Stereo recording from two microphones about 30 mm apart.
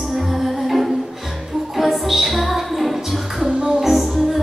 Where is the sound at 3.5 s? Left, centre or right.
Right.